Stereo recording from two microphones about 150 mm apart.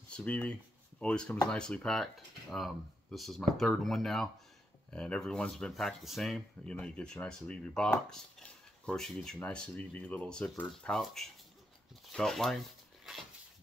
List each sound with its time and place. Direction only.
0.1 s speech: 10° left (ahead or behind)